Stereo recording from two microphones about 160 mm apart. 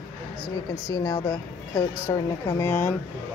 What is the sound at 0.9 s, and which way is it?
A woman's voice, 20° left (ahead or behind).